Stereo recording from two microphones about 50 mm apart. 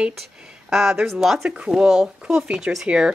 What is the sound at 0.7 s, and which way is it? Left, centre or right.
Speech, centre.